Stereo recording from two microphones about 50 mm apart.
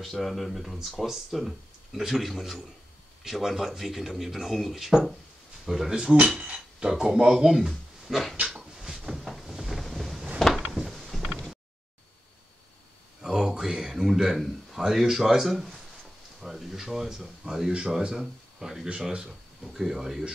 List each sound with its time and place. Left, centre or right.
0.0 s speech: centre
8.5 s cupboard open or close: centre
9.8 s wind noise: centre
10.8 s a sound: centre
13.2 s a sound: centre
14.8 s speech: centre
19.6 s speech: centre